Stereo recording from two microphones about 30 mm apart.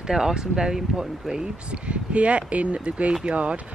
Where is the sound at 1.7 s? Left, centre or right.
Right.